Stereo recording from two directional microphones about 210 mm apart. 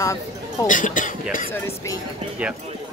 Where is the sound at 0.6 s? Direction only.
40° left (ahead or behind).